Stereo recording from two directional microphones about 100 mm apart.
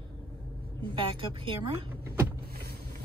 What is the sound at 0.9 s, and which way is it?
Speech, 60° right (ahead or behind).